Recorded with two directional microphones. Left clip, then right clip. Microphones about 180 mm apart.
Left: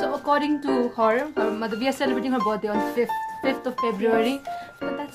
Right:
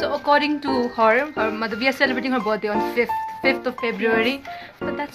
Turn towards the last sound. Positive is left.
turn(degrees=20)  # may be behind; listen again after turning